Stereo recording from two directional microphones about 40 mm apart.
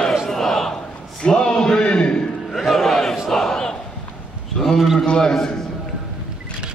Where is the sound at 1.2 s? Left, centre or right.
Left.